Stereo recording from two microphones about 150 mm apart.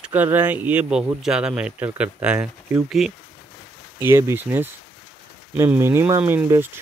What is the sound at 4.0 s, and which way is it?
Speech, 15° right (ahead or behind).